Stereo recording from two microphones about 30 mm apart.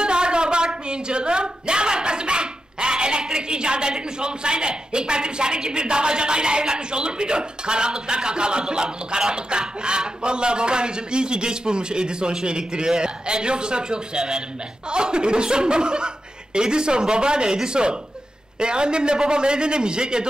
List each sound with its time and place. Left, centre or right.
0.0 s a man's voice: right